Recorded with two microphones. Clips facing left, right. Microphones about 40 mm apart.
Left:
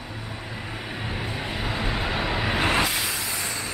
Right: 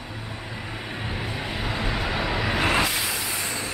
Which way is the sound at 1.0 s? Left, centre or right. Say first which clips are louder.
Even; centre.